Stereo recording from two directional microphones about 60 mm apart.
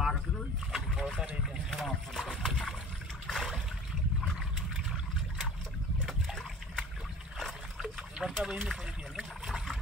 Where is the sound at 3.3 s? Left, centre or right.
Centre.